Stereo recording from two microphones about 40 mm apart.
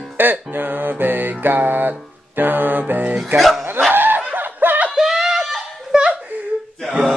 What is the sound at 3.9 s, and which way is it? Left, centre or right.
Snicker, right.